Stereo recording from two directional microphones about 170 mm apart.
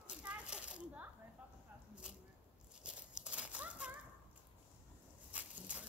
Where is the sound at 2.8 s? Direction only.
5° right (ahead or behind).